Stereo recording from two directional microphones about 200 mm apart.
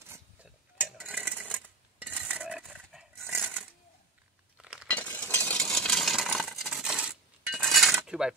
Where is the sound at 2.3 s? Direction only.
5° right (ahead or behind).